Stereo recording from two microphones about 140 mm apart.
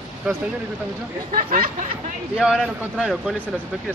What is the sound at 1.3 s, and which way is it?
Speech, 75° right (ahead or behind).